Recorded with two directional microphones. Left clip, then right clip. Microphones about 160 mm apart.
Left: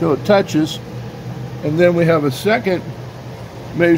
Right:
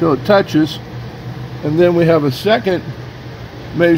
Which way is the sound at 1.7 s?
25° right (ahead or behind).